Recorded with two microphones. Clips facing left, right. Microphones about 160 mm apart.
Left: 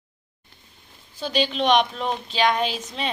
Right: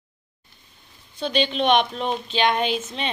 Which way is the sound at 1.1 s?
5° left (ahead or behind).